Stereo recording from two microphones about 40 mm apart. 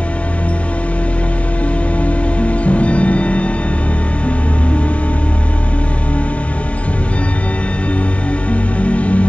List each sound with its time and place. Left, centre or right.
2.0 s music: left
8.5 s music: left